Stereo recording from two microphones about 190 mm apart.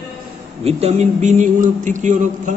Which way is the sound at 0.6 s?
35° right (ahead or behind).